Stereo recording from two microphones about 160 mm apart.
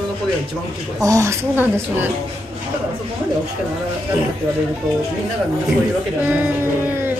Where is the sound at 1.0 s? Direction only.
20° right (ahead or behind).